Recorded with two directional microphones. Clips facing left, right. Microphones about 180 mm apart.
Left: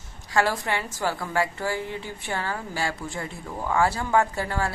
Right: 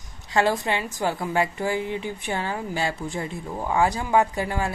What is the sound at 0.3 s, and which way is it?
A woman's voice, 20° right (ahead or behind).